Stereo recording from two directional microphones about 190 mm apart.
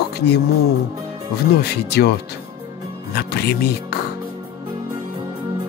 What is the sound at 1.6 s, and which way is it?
Music, 60° left (ahead or behind).